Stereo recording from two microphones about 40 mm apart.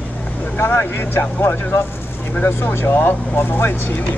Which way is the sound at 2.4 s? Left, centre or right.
Left.